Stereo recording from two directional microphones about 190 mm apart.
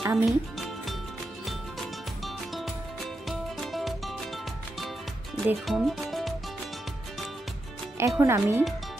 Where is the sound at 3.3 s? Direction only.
Centre (ahead or behind).